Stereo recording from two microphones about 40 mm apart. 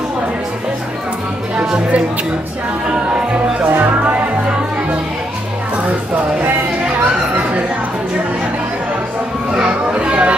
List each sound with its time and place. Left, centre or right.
9.5 s children playing: right